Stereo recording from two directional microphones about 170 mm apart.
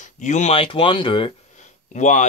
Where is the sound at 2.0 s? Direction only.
45° left (ahead or behind).